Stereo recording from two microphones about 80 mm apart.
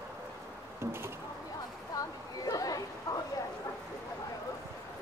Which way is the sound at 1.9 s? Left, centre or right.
Left.